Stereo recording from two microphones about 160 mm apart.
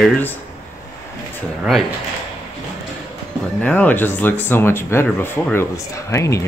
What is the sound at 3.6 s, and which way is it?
Speech, 10° left (ahead or behind).